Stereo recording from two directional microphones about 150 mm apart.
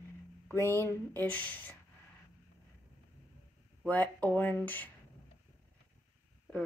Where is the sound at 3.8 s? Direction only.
10° left (ahead or behind).